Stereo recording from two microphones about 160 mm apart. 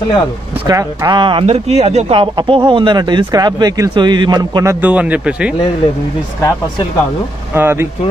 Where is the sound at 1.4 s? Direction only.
40° right (ahead or behind); by 4.7 s 25° right (ahead or behind).